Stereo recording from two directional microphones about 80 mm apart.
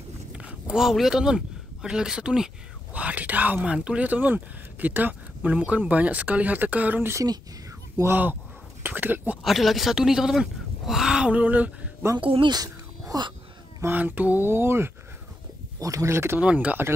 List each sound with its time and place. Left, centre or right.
0.3 s speech: centre
8.0 s mantra: right
9.4 s speech: centre
12.2 s speech: right
12.6 s a sound: right
13.9 s mantra: right
15.8 s speech: right
16.3 s mantra: centre